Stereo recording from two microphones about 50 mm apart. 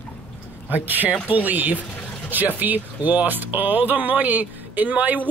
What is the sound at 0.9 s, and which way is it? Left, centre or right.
Speech, right.